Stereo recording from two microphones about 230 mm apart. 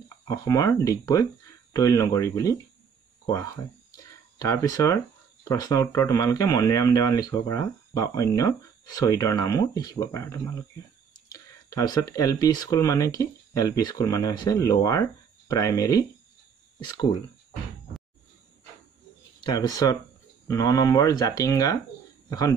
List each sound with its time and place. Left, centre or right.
0.3 s speech: centre
19.4 s speech: centre